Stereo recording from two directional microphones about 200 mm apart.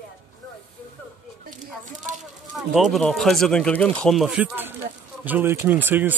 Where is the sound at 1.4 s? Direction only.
40° right (ahead or behind).